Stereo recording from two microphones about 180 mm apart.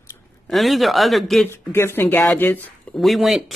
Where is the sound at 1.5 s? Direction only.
15° left (ahead or behind).